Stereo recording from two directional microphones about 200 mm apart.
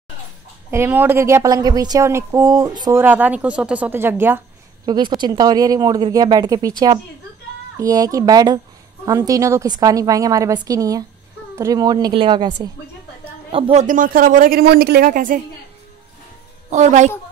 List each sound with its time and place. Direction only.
0.7 s a woman's voice: 10° right (ahead or behind)
3.0 s a woman's voice: 10° right (ahead or behind)
4.8 s a woman's voice: 20° right (ahead or behind)
13.8 s a woman's voice: 45° right (ahead or behind)
16.7 s a woman's voice: 35° right (ahead or behind)